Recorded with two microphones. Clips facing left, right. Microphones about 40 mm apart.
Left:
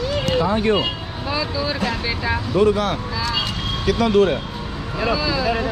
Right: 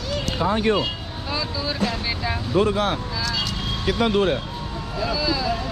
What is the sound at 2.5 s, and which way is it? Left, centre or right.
Speech, centre.